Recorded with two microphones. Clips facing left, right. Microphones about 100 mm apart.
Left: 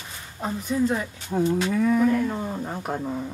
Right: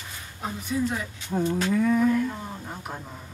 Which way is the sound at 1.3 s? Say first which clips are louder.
Left 2 dB; 5° left (ahead or behind).